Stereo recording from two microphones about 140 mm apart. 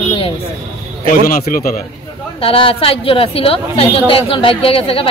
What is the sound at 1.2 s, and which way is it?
Speech, 90° left.